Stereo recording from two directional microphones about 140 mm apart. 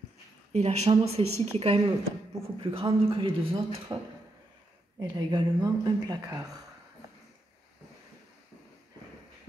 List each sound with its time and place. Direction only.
0.5 s a man's voice: 50° right (ahead or behind); by 4.0 s 35° right (ahead or behind)
5.0 s speech: 30° right (ahead or behind)